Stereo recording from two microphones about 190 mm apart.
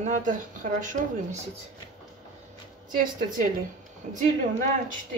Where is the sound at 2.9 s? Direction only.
45° right (ahead or behind).